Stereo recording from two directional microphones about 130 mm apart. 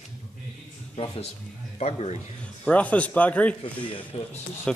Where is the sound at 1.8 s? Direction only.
60° left (ahead or behind).